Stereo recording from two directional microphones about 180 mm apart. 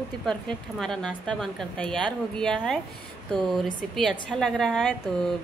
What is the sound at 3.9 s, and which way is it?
A woman's voice, 5° left (ahead or behind).